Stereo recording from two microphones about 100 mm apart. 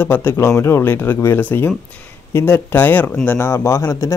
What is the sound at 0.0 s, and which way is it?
Speech, 20° left (ahead or behind).